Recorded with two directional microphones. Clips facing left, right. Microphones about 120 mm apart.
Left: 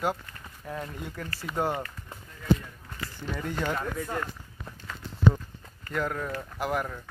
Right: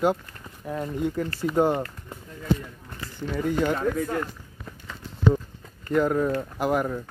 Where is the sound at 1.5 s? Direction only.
Centre (ahead or behind).